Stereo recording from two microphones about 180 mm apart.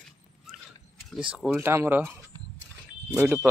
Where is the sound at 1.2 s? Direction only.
5° right (ahead or behind).